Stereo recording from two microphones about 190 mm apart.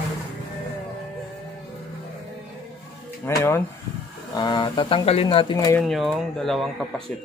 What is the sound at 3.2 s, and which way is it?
Speech, 15° left (ahead or behind).